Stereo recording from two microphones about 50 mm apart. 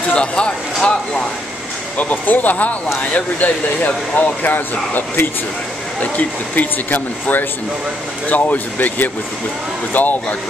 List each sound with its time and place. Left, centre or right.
0.1 s speech: left
2.0 s speech: left
5.9 s speech: left